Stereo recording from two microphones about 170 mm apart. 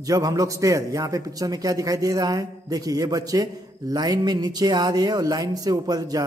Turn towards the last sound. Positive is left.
turn(degrees=-20)  # may be behind; listen again after turning